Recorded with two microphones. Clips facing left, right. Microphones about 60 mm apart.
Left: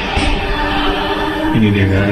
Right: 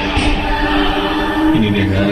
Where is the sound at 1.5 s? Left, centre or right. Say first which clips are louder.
Even; centre.